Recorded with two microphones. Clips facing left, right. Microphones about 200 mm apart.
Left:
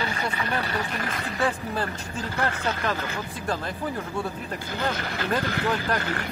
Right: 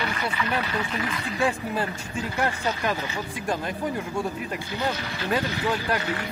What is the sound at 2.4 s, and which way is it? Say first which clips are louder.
Speech: right 1 dB; 10° right (ahead or behind).